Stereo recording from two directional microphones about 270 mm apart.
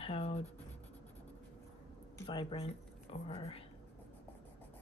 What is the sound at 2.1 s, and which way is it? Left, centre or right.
Speech, centre.